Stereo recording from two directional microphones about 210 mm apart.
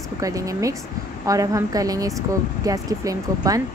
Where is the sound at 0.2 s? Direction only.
15° right (ahead or behind).